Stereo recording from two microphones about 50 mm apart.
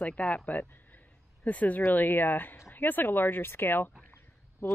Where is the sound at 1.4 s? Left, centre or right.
Left.